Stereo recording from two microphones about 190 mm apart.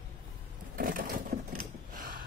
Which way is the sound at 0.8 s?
45° right (ahead or behind).